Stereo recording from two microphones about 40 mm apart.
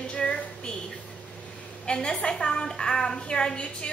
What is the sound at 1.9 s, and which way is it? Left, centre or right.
A woman's voice, left.